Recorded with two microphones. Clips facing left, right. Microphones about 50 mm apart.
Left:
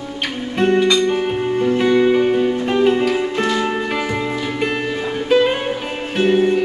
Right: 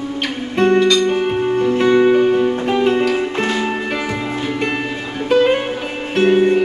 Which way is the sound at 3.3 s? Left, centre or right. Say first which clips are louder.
Even; right.